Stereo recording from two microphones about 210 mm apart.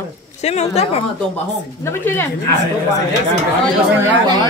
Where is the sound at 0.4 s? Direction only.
30° left (ahead or behind).